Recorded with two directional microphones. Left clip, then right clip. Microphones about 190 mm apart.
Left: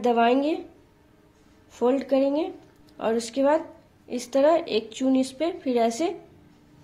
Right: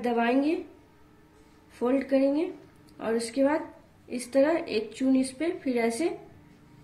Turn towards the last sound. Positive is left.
turn(degrees=45)  # may be behind; listen again after turning